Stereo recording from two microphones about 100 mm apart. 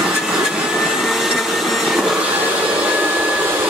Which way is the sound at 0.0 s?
5° right (ahead or behind).